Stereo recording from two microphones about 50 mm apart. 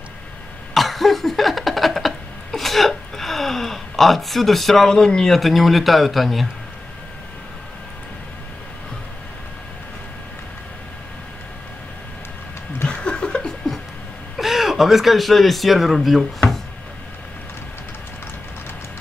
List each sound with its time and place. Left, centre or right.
0.7 s a sound: centre
13.0 s chuckle: centre
14.3 s speech: centre